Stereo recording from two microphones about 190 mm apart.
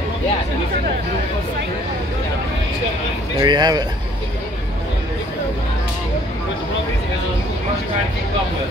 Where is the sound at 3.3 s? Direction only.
20° right (ahead or behind).